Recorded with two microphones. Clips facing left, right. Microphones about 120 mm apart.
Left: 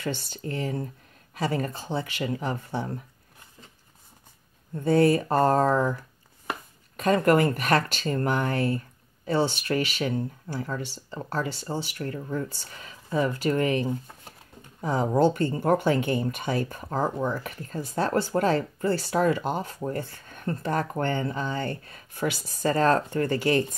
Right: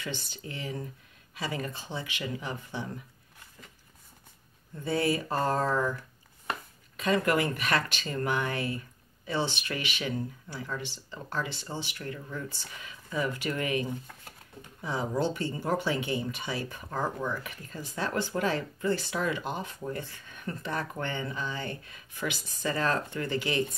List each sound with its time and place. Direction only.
0.0 s speech: 45° left (ahead or behind)
4.7 s speech: 45° left (ahead or behind)
7.0 s speech: 45° left (ahead or behind)